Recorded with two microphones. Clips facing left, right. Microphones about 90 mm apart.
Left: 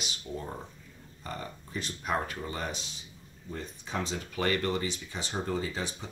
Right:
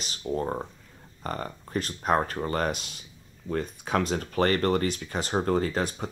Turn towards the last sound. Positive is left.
turn(degrees=-50)  # may be behind; listen again after turning